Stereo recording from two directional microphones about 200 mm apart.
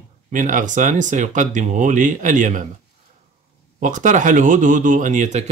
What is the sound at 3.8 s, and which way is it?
Speech, 40° right (ahead or behind).